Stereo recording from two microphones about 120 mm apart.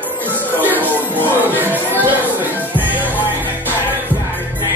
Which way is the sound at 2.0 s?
15° right (ahead or behind).